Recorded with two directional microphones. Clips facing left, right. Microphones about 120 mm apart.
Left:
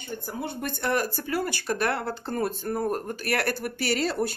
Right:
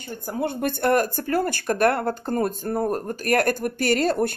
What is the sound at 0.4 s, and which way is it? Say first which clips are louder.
Speech: right 9 dB; 55° right (ahead or behind).